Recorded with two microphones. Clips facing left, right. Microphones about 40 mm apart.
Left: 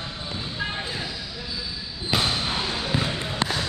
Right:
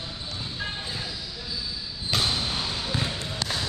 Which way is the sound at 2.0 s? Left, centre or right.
Centre.